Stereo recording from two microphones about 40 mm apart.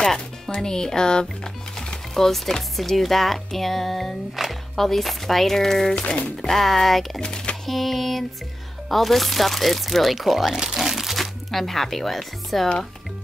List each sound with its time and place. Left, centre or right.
0.6 s speech: centre
6.0 s speech: left
6.3 s speech: centre
7.2 s speech: left
7.6 s a sound: centre
8.8 s speech: centre